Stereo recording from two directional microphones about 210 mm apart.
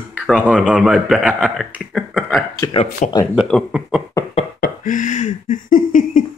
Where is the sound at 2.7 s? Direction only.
30° left (ahead or behind).